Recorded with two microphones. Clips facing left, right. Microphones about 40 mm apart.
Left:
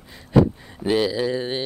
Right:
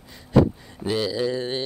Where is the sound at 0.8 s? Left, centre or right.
Left.